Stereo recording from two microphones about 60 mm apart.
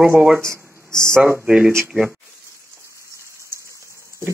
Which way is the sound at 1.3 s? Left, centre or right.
Right.